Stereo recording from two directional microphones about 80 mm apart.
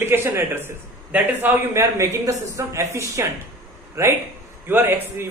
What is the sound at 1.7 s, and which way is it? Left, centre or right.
A man's voice, right.